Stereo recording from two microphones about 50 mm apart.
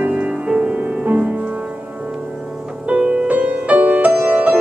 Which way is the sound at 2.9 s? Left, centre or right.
Right.